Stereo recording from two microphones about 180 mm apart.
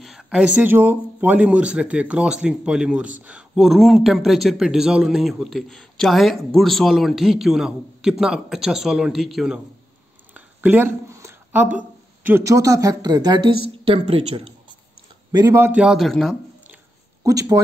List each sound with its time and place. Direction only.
0.0 s speech: 5° right (ahead or behind); by 14.5 s 30° right (ahead or behind)
15.3 s speech: 15° right (ahead or behind); by 16.3 s centre (ahead or behind)
17.2 s speech: 20° right (ahead or behind)